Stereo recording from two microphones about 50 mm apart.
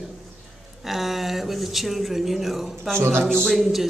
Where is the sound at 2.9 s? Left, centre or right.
Right.